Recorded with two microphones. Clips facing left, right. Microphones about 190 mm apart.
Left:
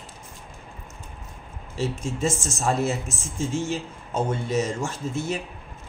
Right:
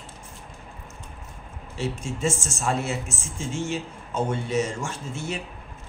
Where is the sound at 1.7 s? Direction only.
40° left (ahead or behind).